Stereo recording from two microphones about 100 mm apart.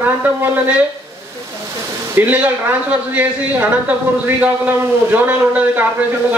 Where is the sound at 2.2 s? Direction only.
15° right (ahead or behind).